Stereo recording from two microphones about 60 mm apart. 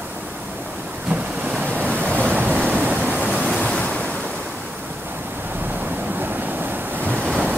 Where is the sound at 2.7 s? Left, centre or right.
Right.